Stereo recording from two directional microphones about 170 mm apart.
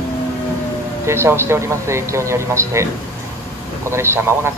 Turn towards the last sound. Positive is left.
turn(degrees=-15)  # may be behind; listen again after turning